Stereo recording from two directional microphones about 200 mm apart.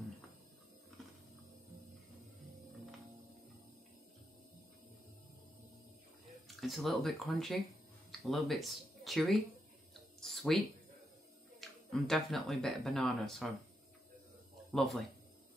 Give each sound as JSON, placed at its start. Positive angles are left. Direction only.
{"t": 6.2, "sound": "speech", "side_deg": 0}
{"t": 10.2, "sound": "a sound", "side_deg": 0}
{"t": 11.6, "sound": "speech", "side_deg": 0}
{"t": 14.7, "sound": "speech", "side_deg": 0}